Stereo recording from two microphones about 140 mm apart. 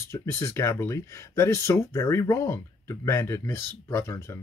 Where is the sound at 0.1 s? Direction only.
20° left (ahead or behind).